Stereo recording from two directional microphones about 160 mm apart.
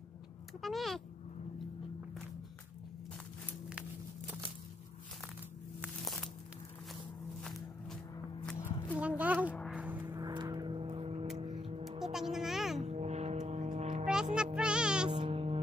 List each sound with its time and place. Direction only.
0.6 s speech: centre (ahead or behind)
5.8 s a sound: centre (ahead or behind)
7.4 s walk: centre (ahead or behind)
8.5 s a sound: 15° left (ahead or behind)
8.9 s a sound: 10° right (ahead or behind)
9.7 s vehicle: 10° right (ahead or behind)
10.1 s vehicle: 25° right (ahead or behind)
11.5 s music: 35° right (ahead or behind)
12.0 s music: centre (ahead or behind)
12.8 s a sound: 45° right (ahead or behind)
14.3 s music: 5° right (ahead or behind)
15.0 s music: 35° right (ahead or behind)